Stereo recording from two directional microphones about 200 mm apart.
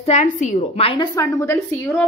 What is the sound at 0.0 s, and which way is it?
Speech, 35° left (ahead or behind).